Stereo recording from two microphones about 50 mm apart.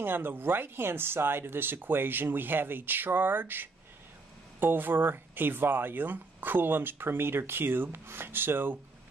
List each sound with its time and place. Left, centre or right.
0.0 s speech: right